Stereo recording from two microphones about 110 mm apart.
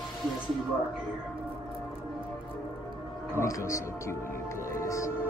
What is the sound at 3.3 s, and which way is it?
A man's voice, 25° left (ahead or behind).